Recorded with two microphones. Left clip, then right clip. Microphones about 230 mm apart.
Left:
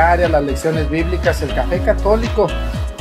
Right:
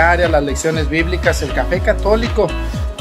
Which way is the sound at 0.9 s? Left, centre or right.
Centre.